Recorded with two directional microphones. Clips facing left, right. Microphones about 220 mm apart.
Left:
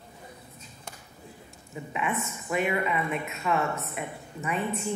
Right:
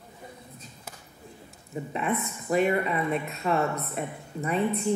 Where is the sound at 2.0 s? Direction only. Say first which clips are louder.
Right 2 dB; 35° right (ahead or behind).